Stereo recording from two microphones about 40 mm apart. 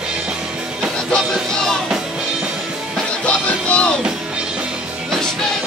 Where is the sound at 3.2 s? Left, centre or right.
Left.